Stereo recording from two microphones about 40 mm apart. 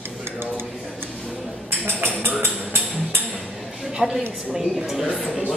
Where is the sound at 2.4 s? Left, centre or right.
Right.